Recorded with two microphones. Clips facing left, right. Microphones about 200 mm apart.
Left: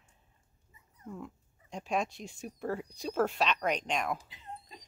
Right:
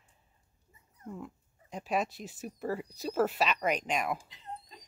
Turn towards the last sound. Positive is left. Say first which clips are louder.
# right 1 dB
turn(degrees=-5)  # may be behind; listen again after turning